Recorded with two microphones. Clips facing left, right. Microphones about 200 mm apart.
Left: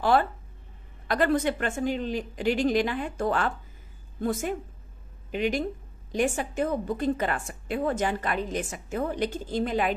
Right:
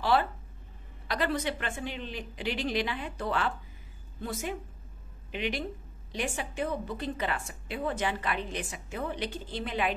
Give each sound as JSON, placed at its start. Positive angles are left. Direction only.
{"t": 0.0, "sound": "a woman's voice", "side_deg": 50}